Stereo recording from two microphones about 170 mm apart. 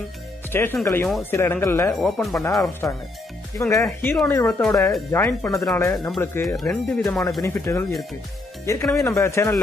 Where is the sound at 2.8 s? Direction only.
15° left (ahead or behind).